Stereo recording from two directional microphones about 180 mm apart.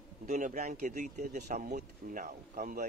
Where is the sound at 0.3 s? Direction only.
45° right (ahead or behind).